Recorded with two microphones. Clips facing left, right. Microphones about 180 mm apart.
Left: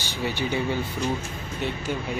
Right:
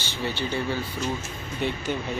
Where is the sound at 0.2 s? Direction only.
15° left (ahead or behind).